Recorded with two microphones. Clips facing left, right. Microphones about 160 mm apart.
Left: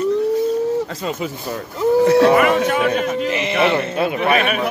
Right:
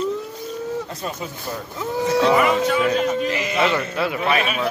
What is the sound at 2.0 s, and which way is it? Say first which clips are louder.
Speech: left 2 dB; 60° left (ahead or behind).